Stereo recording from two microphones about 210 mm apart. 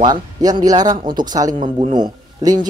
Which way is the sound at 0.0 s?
20° right (ahead or behind).